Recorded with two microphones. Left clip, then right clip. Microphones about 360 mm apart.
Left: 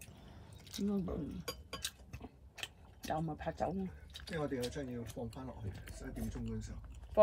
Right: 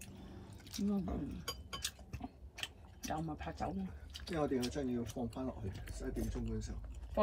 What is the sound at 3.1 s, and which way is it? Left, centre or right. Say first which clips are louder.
Speech: left 4 dB; left.